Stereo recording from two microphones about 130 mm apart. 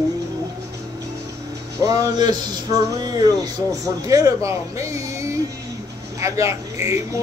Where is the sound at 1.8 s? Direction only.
30° right (ahead or behind).